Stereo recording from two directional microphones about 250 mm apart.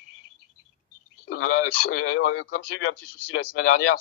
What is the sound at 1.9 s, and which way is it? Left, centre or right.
Speech, left.